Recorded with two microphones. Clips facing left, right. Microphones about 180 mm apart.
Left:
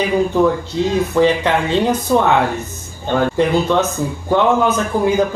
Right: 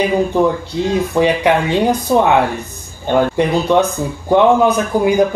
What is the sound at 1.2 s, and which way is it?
Speech, 15° right (ahead or behind).